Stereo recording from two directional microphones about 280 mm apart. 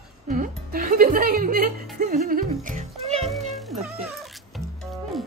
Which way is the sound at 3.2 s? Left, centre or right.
Centre.